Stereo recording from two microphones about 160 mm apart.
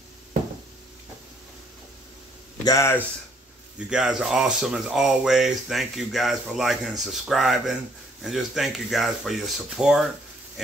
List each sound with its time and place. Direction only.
2.6 s speech: 20° left (ahead or behind)
3.9 s speech: 5° right (ahead or behind)